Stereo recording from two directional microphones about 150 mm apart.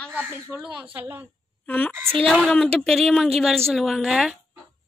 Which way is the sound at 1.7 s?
10° left (ahead or behind).